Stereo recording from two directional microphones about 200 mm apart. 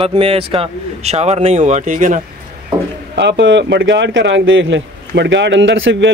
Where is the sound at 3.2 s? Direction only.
65° right (ahead or behind).